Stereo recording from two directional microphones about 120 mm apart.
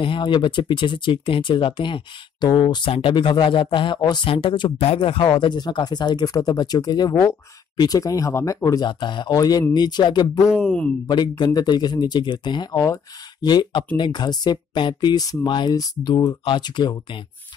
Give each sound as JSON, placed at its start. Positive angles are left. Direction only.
{"t": 0.0, "sound": "speech", "side_deg": 45}
{"t": 8.8, "sound": "speech", "side_deg": 40}
{"t": 9.3, "sound": "speech", "side_deg": 30}
{"t": 10.6, "sound": "speech", "side_deg": 5}
{"t": 11.1, "sound": "speech", "side_deg": 40}